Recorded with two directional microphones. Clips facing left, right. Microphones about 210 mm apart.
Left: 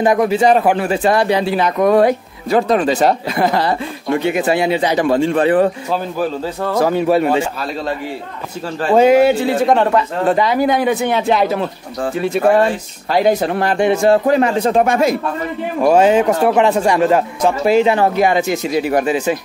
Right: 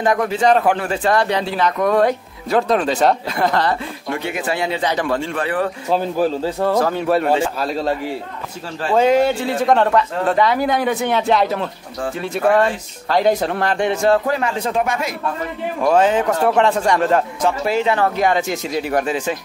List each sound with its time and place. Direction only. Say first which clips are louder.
0.0 s speech: left 4 dB; 10° left (ahead or behind)
4.1 s speech: left 7 dB; 20° left (ahead or behind)
5.9 s a man's voice: right 1 dB; 30° right (ahead or behind)
6.8 s speech: left 9 dB; 5° left (ahead or behind)
8.9 s speech: left 4 dB; 10° left (ahead or behind); by 15.1 s 30° left (ahead or behind)
15.8 s speech: left 4 dB; 15° left (ahead or behind)